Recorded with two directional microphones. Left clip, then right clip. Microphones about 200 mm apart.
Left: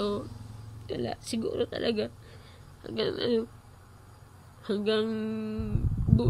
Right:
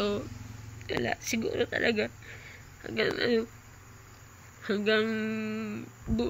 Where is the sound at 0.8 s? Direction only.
15° left (ahead or behind).